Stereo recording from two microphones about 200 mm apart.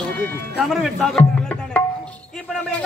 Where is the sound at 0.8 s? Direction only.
Centre (ahead or behind).